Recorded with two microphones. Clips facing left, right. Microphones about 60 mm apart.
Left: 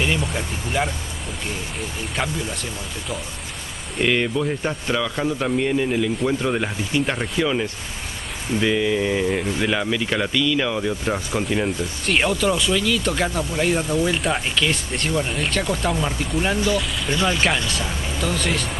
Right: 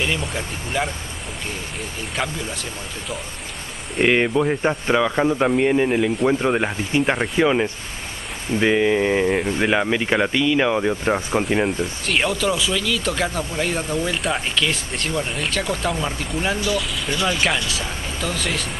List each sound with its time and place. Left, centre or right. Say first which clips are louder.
0.0 s speech: left 1 dB; centre
4.1 s speech: right 3 dB; right
11.6 s speech: right 1 dB; centre